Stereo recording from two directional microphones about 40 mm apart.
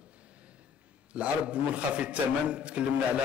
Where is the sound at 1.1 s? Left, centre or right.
Right.